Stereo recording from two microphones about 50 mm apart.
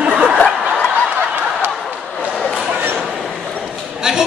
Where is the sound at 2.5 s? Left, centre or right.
Centre.